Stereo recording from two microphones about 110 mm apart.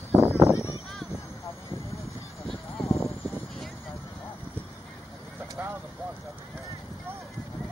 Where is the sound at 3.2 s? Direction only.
Centre (ahead or behind).